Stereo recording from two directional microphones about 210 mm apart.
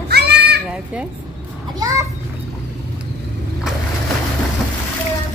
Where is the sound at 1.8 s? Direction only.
15° right (ahead or behind).